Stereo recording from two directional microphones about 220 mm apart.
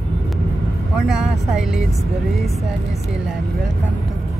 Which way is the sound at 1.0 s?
Centre (ahead or behind).